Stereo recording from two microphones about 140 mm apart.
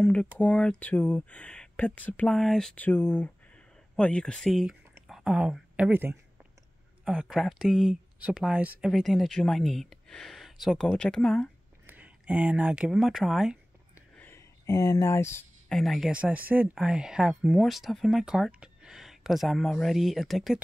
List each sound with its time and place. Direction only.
0.0 s speech: 5° left (ahead or behind)
11.8 s speech: 10° right (ahead or behind)
14.1 s a sound: 15° left (ahead or behind)
15.7 s speech: centre (ahead or behind)